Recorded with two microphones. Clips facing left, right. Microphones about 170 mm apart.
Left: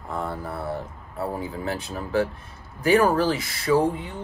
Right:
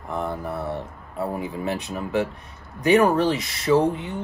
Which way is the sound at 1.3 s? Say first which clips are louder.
Right 3 dB; 20° right (ahead or behind).